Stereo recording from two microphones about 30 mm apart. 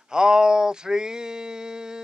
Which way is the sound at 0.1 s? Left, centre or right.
Right.